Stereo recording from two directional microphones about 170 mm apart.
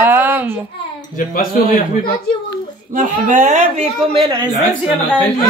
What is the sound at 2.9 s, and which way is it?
A man's voice, 50° right (ahead or behind).